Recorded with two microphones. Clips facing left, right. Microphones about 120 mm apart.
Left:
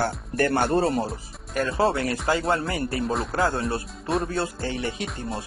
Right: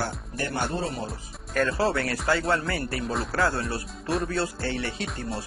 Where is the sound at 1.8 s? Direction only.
20° left (ahead or behind).